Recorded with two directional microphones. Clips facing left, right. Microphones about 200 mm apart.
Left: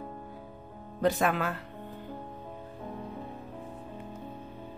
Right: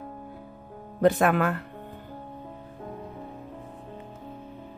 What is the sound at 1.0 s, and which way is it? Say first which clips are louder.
Speech: right 6 dB; 55° right (ahead or behind).